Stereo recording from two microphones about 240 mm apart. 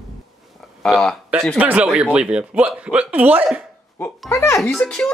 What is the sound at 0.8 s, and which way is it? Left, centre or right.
Speech, centre.